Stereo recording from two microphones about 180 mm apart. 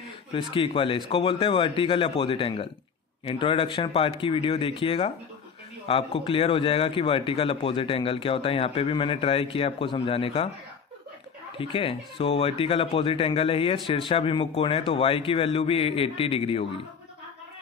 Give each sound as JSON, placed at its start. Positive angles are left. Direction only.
{"t": 0.3, "sound": "speech", "side_deg": 30}
{"t": 11.5, "sound": "speech", "side_deg": 30}